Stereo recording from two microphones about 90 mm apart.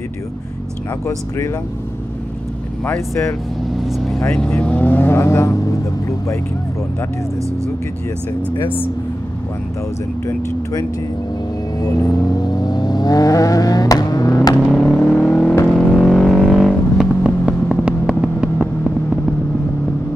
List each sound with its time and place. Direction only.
2.8 s speech: 30° left (ahead or behind)
3.8 s vehicle: centre (ahead or behind)
4.3 s speech: 10° left (ahead or behind); by 6.4 s 35° left (ahead or behind)
10.2 s speech: 40° left (ahead or behind)
12.2 s vehicle: 45° left (ahead or behind)
14.7 s a sound: 5° left (ahead or behind)
15.6 s vehicle: 5° left (ahead or behind); by 18.9 s 15° right (ahead or behind)